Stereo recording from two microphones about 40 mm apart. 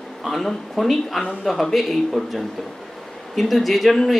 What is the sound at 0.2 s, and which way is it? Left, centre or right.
Speech, centre.